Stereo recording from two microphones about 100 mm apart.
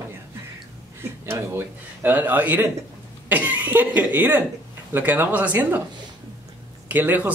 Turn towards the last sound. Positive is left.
turn(degrees=-15)  # may be behind; listen again after turning